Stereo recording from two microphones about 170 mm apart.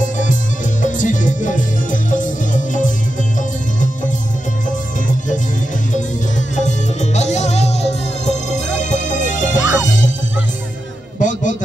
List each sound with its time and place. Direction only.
0.0 s music: 50° left (ahead or behind)
6.5 s music: 45° left (ahead or behind)
11.1 s music: 50° left (ahead or behind)